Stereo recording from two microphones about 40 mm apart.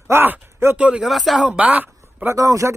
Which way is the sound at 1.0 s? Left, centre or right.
Centre.